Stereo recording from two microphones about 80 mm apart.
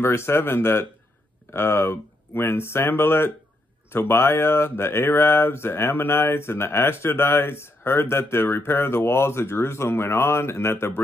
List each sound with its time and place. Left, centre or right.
0.0 s speech: left